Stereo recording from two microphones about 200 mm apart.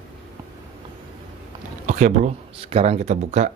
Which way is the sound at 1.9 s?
40° right (ahead or behind).